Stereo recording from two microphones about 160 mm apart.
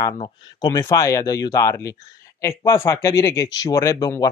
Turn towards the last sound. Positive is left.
turn(degrees=20)  # may be behind; listen again after turning